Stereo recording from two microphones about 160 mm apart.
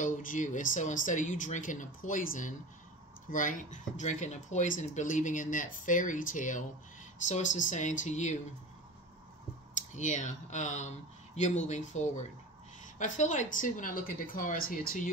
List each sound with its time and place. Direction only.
0.0 s speech: 55° left (ahead or behind)
9.8 s speech: 50° left (ahead or behind)